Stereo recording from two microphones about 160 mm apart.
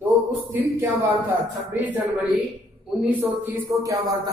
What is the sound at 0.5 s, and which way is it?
Speech, 15° right (ahead or behind).